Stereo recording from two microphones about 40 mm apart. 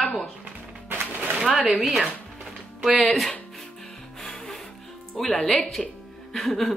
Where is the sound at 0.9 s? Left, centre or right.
Right.